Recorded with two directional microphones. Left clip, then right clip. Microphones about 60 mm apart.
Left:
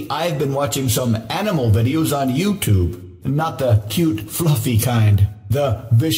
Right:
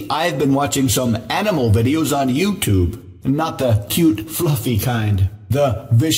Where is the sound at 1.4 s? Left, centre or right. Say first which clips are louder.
Right 3 dB; right.